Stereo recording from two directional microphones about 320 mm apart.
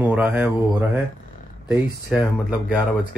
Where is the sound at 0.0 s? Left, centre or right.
Centre.